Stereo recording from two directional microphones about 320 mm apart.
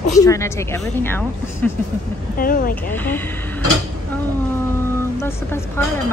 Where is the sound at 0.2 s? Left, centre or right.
Centre.